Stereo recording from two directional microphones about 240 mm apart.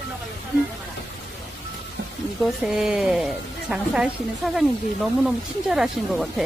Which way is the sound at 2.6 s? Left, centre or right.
Centre.